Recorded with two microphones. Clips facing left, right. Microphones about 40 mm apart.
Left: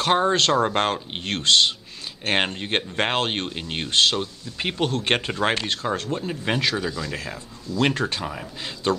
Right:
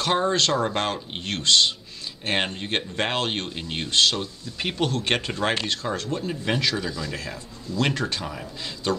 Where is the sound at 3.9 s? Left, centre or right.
Left.